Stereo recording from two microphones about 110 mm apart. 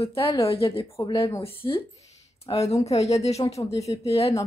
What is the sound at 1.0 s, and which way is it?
Speech, 45° left (ahead or behind).